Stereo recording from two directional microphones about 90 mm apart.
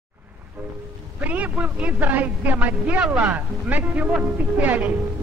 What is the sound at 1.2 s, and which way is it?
A man's voice, 15° right (ahead or behind).